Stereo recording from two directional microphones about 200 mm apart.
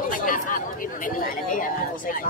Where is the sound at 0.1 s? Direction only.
40° left (ahead or behind).